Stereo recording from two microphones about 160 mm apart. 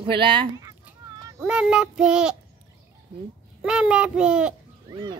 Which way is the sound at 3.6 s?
5° right (ahead or behind).